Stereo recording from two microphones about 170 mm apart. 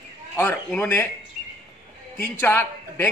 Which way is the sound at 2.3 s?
10° left (ahead or behind).